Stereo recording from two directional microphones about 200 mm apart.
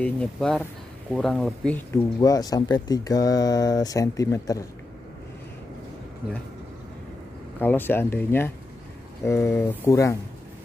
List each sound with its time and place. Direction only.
0.0 s speech: 5° left (ahead or behind)
7.6 s speech: 10° left (ahead or behind)